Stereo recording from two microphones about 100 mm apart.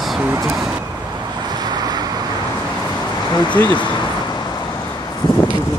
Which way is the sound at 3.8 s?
40° left (ahead or behind).